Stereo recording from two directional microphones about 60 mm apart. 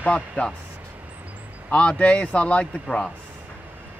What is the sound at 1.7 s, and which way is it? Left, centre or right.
Speech, centre.